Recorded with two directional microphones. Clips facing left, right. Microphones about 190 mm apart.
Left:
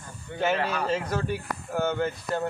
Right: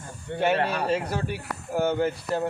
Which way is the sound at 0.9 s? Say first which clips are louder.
Right 1 dB; 10° right (ahead or behind).